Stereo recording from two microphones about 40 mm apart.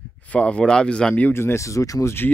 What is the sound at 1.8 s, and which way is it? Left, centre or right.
Speech, left.